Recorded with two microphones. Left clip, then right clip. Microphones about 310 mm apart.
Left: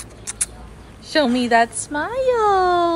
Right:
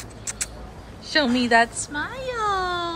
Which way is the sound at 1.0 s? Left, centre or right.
Centre.